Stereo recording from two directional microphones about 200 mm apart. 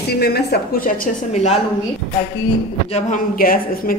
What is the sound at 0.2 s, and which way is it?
A woman's voice, 50° left (ahead or behind).